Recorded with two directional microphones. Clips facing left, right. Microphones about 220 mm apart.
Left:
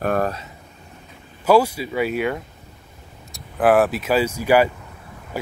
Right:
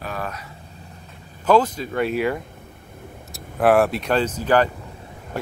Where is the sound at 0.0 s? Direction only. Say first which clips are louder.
Left 9 dB; 55° left (ahead or behind).